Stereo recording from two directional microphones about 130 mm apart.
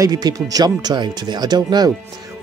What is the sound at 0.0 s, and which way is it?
Speech, 30° right (ahead or behind).